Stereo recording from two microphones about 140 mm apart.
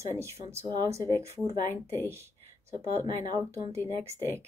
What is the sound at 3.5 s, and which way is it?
Speech, 20° right (ahead or behind).